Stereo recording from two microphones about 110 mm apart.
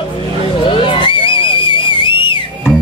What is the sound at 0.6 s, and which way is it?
Whistle, 50° left (ahead or behind).